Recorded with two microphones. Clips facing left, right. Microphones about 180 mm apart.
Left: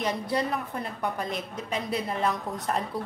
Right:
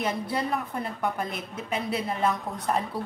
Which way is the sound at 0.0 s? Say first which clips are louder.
Left 1 dB; 5° right (ahead or behind).